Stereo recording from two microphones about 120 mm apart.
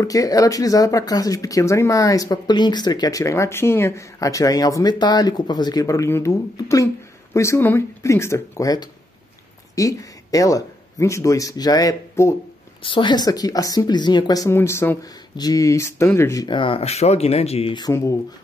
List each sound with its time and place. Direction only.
0.0 s speech: 30° left (ahead or behind)
12.8 s a woman's voice: 45° left (ahead or behind)
14.5 s speech: 20° left (ahead or behind)
15.0 s speech: 35° left (ahead or behind)
16.4 s speech: 45° left (ahead or behind)